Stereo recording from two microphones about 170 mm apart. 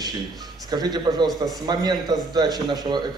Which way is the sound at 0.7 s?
25° right (ahead or behind).